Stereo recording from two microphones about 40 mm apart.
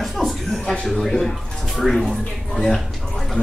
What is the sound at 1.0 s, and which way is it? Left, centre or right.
Speech, centre.